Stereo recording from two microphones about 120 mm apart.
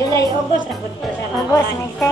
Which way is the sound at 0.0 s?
30° left (ahead or behind).